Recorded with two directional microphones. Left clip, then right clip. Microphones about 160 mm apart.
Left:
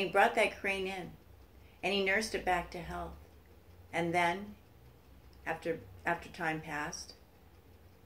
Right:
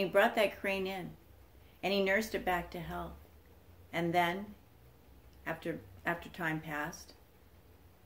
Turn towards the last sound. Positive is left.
turn(degrees=-15)  # may be behind; listen again after turning